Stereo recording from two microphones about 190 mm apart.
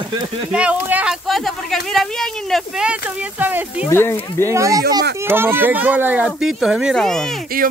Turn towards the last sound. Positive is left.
turn(degrees=0)  # may be behind; listen again after turning